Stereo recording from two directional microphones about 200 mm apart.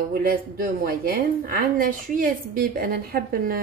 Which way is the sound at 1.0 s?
50° right (ahead or behind).